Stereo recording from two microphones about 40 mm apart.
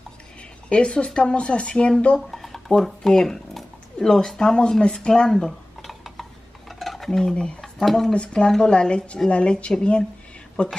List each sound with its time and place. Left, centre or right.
0.7 s speech: left
2.1 s a sound: centre
2.7 s speech: centre
5.8 s cutlery: centre
6.8 s stir: centre
7.1 s speech: centre
7.6 s a sound: centre
8.1 s speech: left
10.6 s a woman's voice: left